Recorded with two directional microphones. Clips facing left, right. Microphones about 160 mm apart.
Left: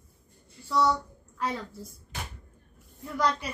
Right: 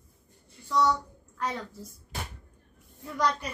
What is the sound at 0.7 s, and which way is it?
A child's voice, 5° left (ahead or behind).